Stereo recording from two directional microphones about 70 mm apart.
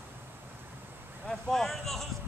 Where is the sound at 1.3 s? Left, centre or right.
Centre.